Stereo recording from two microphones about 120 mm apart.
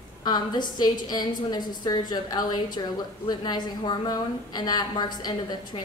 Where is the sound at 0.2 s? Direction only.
35° left (ahead or behind).